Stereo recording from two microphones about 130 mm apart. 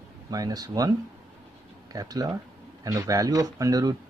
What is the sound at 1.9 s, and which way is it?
Speech, 30° right (ahead or behind).